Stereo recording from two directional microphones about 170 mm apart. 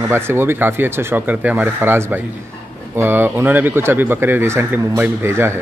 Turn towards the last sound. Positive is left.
turn(degrees=-15)  # may be behind; listen again after turning